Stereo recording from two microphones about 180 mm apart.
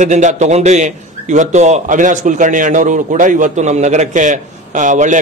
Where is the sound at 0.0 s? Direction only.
40° right (ahead or behind).